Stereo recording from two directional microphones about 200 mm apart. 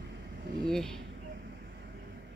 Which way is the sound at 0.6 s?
Centre (ahead or behind).